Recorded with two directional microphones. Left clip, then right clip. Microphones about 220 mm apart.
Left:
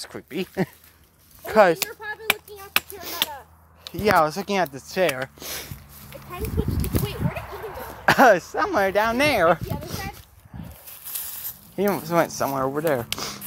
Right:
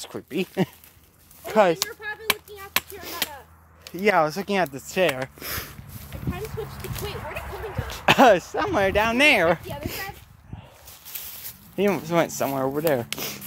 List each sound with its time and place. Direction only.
0.0 s speech: 15° right (ahead or behind)
1.4 s chop: 10° left (ahead or behind)
3.9 s speech: centre (ahead or behind)
6.7 s a sound: 25° left (ahead or behind)
8.0 s a sound: 5° right (ahead or behind)
8.5 s speech: centre (ahead or behind)
11.7 s speech: 5° right (ahead or behind)